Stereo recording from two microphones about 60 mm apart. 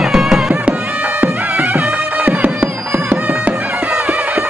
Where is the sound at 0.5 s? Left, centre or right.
Right.